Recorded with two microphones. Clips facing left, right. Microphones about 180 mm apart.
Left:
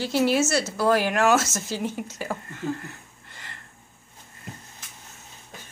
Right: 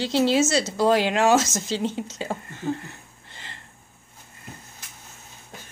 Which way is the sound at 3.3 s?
25° right (ahead or behind).